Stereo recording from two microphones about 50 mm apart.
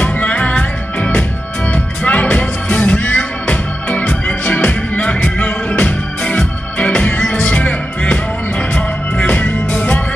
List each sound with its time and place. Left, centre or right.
0.0 s music: left